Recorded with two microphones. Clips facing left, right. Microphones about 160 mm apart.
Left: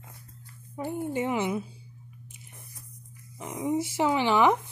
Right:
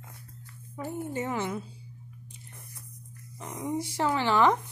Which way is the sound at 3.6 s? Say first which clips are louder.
Left 3 dB; 10° left (ahead or behind).